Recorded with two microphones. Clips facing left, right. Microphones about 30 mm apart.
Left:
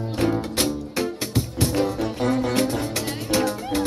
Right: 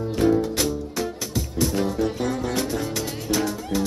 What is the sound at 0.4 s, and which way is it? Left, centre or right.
Music, left.